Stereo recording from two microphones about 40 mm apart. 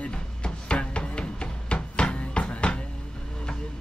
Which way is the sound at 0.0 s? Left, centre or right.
Left.